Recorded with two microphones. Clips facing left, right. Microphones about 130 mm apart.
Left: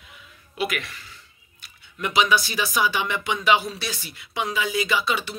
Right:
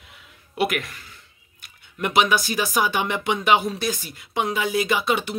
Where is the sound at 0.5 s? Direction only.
55° right (ahead or behind).